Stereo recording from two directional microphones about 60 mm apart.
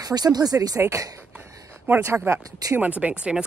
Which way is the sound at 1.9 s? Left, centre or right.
Right.